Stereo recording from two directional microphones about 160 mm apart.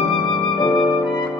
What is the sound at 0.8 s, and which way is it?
Music, 30° left (ahead or behind).